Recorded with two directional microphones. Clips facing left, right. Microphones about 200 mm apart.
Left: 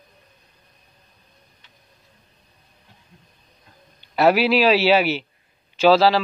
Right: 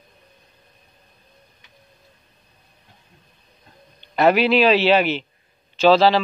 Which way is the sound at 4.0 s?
5° left (ahead or behind).